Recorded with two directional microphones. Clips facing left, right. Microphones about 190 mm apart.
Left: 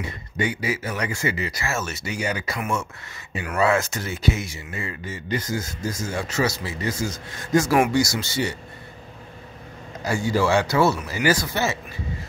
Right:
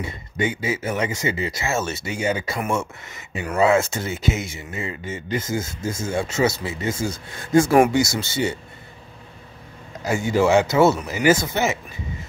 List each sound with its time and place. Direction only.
0.5 s speech: 25° right (ahead or behind)
10.1 s speech: 20° right (ahead or behind)